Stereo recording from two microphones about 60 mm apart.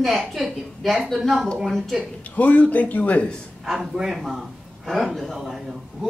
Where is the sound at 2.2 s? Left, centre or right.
Left.